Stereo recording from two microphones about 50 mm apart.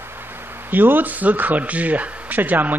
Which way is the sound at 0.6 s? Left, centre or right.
Right.